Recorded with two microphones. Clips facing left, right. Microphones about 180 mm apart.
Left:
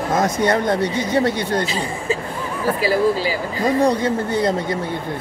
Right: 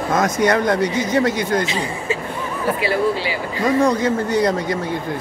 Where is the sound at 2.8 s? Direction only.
40° left (ahead or behind).